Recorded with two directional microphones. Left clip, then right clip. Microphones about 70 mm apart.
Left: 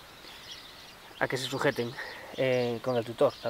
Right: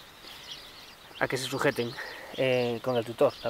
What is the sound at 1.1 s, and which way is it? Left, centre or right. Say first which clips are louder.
Speech: right 1 dB; centre.